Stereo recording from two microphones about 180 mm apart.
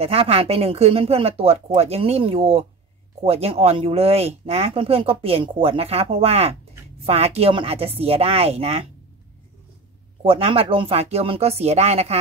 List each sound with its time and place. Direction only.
0.0 s speech: 35° right (ahead or behind)
10.2 s speech: 30° right (ahead or behind)